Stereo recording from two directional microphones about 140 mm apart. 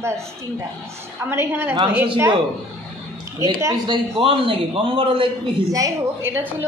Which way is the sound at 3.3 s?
25° right (ahead or behind).